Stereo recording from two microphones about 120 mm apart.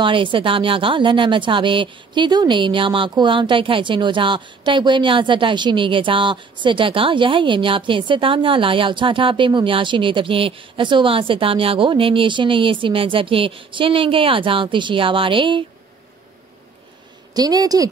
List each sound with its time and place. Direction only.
0.0 s speech: 45° right (ahead or behind)
17.3 s a woman's voice: 35° right (ahead or behind)